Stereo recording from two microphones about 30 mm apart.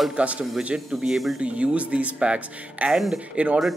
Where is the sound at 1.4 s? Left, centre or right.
Right.